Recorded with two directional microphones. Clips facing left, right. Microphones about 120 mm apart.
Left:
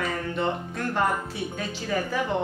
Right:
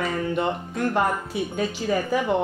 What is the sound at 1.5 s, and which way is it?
Speech, 15° right (ahead or behind).